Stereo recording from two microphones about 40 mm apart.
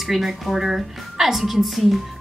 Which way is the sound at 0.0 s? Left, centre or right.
Centre.